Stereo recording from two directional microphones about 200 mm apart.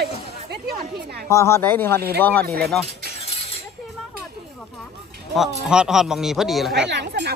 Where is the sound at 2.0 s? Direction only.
50° right (ahead or behind).